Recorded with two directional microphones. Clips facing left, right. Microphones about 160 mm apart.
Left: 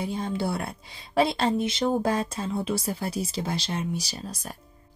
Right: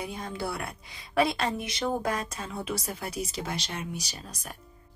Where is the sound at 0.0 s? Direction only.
30° left (ahead or behind).